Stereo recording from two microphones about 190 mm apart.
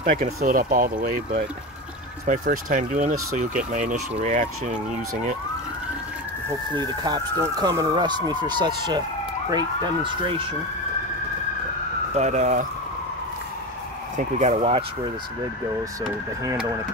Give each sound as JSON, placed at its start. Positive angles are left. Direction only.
{"t": 0.0, "sound": "speech", "side_deg": -35}
{"t": 0.4, "sound": "speech", "side_deg": -45}
{"t": 6.7, "sound": "speech", "side_deg": -20}
{"t": 12.2, "sound": "speech", "side_deg": -40}
{"t": 14.1, "sound": "speech", "side_deg": -35}